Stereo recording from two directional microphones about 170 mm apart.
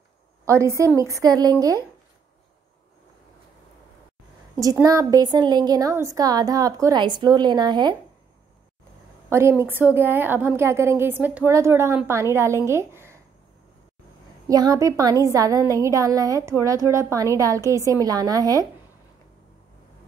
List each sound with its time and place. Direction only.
0.5 s a woman's voice: 15° right (ahead or behind)
4.6 s a woman's voice: 20° right (ahead or behind)
9.3 s a woman's voice: 15° right (ahead or behind)
14.5 s a woman's voice: 20° right (ahead or behind)